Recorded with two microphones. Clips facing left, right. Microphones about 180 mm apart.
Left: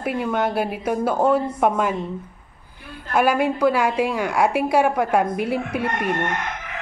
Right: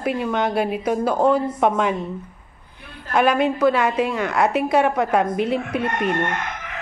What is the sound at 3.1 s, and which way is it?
A woman's voice, 10° left (ahead or behind).